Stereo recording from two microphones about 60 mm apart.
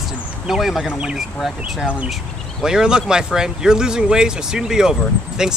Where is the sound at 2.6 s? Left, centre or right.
Centre.